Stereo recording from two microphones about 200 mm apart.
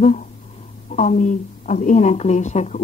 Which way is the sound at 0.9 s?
35° left (ahead or behind).